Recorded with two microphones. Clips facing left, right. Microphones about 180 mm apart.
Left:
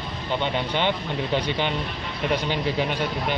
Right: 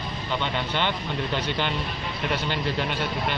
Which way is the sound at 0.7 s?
15° left (ahead or behind).